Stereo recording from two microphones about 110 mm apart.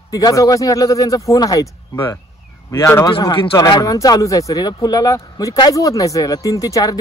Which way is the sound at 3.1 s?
50° left (ahead or behind).